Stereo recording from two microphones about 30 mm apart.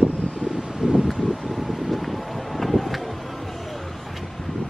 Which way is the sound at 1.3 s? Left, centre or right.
Centre.